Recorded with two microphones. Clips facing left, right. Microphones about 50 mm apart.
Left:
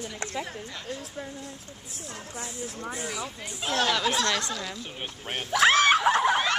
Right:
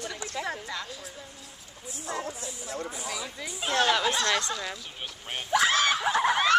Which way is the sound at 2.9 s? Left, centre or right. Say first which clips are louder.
Left 2 dB; left.